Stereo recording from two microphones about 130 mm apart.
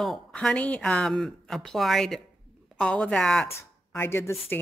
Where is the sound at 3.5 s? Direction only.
20° left (ahead or behind).